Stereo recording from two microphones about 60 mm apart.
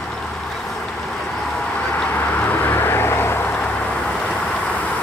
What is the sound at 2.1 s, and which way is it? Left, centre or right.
Vehicle, left.